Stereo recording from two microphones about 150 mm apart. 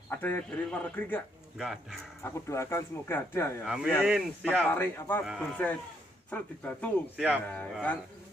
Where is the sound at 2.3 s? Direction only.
20° left (ahead or behind).